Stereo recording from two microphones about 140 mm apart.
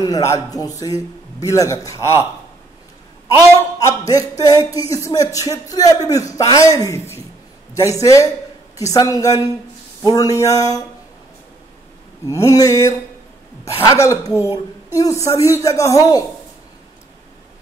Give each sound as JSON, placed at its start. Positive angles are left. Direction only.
{"t": 0.0, "sound": "a man's voice", "side_deg": 25}
{"t": 3.3, "sound": "a man's voice", "side_deg": 20}
{"t": 12.3, "sound": "a man's voice", "side_deg": 20}